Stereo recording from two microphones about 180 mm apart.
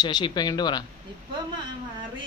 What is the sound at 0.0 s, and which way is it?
Speech, 25° left (ahead or behind).